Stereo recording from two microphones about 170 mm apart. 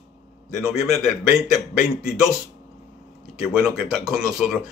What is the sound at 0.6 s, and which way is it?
A man's voice, 5° right (ahead or behind).